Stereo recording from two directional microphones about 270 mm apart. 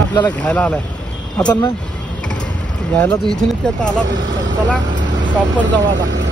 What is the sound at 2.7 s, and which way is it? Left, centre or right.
A man's voice, centre.